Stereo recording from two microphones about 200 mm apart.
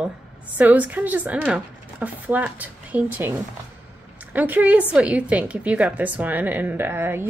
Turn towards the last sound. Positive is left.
turn(degrees=-10)  # may be behind; listen again after turning